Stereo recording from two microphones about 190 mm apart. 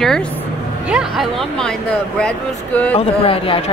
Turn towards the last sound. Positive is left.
turn(degrees=30)  # may be behind; listen again after turning